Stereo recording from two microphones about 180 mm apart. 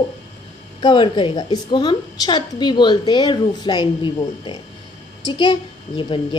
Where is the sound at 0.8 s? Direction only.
25° left (ahead or behind).